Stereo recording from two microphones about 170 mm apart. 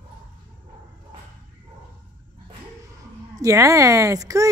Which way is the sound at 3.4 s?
20° right (ahead or behind).